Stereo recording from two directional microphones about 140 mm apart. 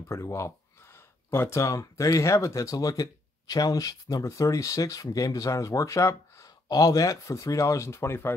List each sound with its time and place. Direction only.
0.1 s speech: 20° left (ahead or behind)